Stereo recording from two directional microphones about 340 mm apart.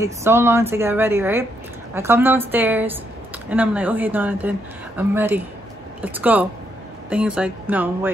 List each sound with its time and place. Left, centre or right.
0.0 s a woman's voice: centre